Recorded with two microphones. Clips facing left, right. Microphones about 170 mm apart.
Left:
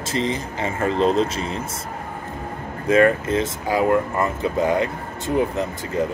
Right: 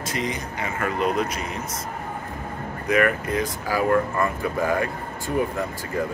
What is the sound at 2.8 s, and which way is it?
Speech, 25° left (ahead or behind).